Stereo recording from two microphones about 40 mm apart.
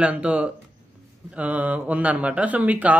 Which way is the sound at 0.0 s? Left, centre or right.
Right.